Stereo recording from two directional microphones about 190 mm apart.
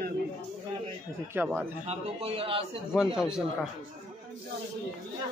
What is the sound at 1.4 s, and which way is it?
Speech, 10° right (ahead or behind).